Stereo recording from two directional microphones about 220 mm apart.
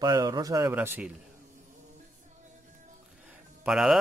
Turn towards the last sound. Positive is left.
turn(degrees=-5)  # may be behind; listen again after turning